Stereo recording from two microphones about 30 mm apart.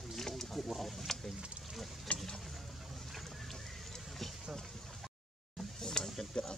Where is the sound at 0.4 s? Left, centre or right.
Centre.